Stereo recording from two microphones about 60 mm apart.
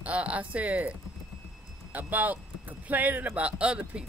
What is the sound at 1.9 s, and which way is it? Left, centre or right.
Speech, right.